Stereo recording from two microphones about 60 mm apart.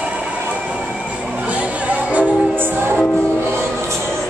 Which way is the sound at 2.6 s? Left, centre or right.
Right.